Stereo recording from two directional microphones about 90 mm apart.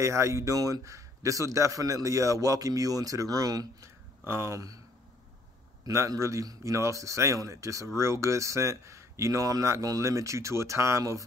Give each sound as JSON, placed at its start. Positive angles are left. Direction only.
{"t": 0.0, "sound": "a man's voice", "side_deg": -35}
{"t": 4.2, "sound": "a man's voice", "side_deg": -30}
{"t": 5.9, "sound": "a man's voice", "side_deg": -35}